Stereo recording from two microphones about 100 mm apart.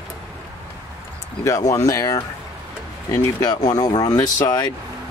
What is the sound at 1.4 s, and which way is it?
Speech, 30° left (ahead or behind).